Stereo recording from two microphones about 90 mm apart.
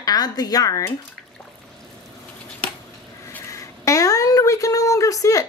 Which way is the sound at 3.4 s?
35° left (ahead or behind).